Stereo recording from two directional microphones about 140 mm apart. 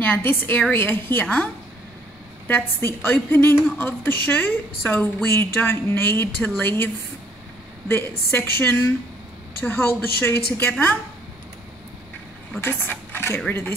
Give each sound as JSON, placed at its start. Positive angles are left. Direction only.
{"t": 0.0, "sound": "a woman's voice", "side_deg": 15}
{"t": 7.9, "sound": "a woman's voice", "side_deg": 15}
{"t": 12.5, "sound": "a woman's voice", "side_deg": 15}